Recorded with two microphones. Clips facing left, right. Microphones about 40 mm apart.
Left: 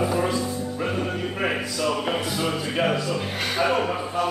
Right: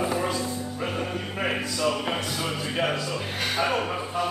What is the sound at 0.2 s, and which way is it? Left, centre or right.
Music, centre.